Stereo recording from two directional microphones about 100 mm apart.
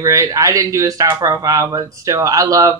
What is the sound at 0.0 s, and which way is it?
Speech, 30° right (ahead or behind).